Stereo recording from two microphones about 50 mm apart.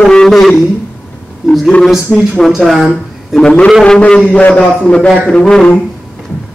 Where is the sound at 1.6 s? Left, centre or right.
Centre.